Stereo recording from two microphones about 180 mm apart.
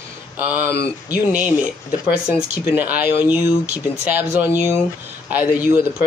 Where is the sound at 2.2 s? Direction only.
5° right (ahead or behind).